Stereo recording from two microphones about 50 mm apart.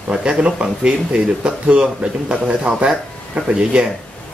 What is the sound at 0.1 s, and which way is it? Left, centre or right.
Speech, centre.